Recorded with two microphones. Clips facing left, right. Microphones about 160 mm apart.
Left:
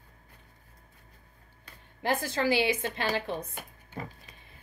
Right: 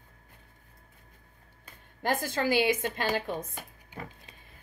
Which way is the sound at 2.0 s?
45° right (ahead or behind).